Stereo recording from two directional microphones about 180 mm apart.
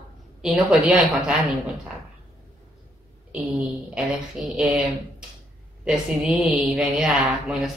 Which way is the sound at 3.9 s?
Centre (ahead or behind).